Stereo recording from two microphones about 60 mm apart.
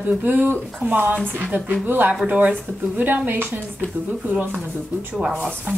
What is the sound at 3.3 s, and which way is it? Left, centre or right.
Speech, right.